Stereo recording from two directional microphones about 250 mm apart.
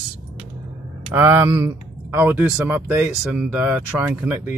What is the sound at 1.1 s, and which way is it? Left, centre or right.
Speech, centre.